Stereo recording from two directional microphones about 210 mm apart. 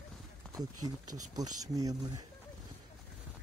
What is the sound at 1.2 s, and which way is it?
Speech, 15° right (ahead or behind).